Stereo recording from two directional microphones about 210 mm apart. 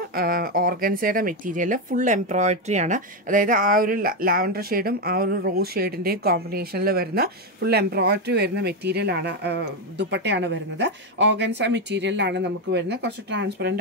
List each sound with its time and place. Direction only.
0.1 s speech: 45° right (ahead or behind)